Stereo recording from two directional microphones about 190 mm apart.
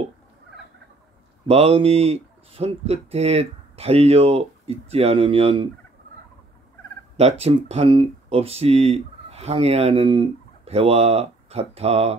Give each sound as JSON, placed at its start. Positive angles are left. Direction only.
{"t": 1.5, "sound": "speech", "side_deg": -30}
{"t": 7.2, "sound": "speech", "side_deg": -35}